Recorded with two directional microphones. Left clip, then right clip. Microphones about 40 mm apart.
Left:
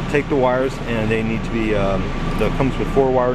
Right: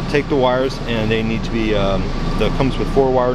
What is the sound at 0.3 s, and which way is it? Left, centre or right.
Speech, centre.